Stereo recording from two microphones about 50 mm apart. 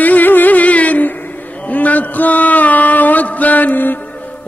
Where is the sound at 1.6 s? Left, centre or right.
Left.